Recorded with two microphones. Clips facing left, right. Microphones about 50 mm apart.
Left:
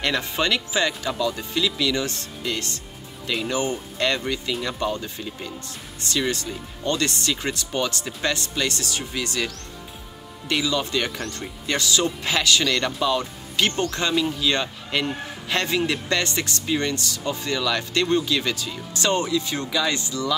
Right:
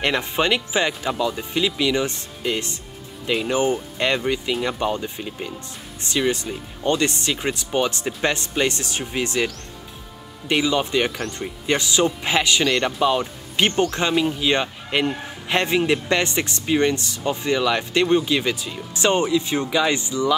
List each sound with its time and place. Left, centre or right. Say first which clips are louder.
0.0 s speech: right 3 dB; right
10.5 s speech: right 4 dB; right